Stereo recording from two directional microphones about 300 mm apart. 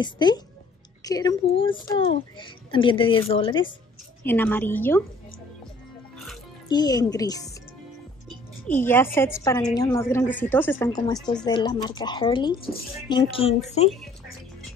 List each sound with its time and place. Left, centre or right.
0.0 s a child's voice: centre
6.7 s a child's voice: centre
8.6 s a child's voice: centre
12.5 s speech: left
13.1 s speech: centre